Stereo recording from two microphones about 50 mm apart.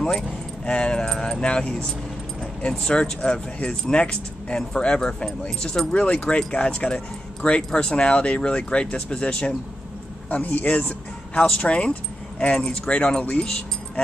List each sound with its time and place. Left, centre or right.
0.7 s speech: centre